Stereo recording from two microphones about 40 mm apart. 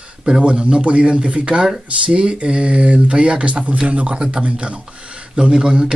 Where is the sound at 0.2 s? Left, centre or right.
Centre.